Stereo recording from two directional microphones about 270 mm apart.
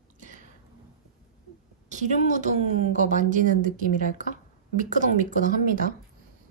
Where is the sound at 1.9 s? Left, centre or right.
Right.